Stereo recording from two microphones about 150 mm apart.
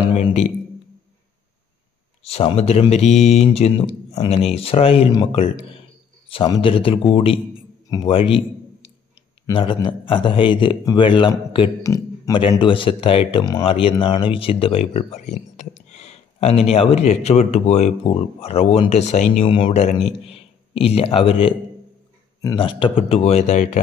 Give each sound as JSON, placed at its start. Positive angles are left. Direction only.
{"t": 0.1, "sound": "a sound", "side_deg": 50}
{"t": 2.2, "sound": "speech", "side_deg": 45}
{"t": 3.8, "sound": "speech", "side_deg": 35}
{"t": 6.2, "sound": "a sound", "side_deg": 35}
{"t": 6.6, "sound": "speech", "side_deg": 35}
{"t": 9.5, "sound": "speech", "side_deg": 35}
{"t": 11.8, "sound": "speech", "side_deg": 20}
{"t": 12.4, "sound": "speech", "side_deg": 35}
{"t": 15.9, "sound": "a sound", "side_deg": 45}
{"t": 16.7, "sound": "speech", "side_deg": 45}
{"t": 19.4, "sound": "speech", "side_deg": 35}
{"t": 22.6, "sound": "speech", "side_deg": 35}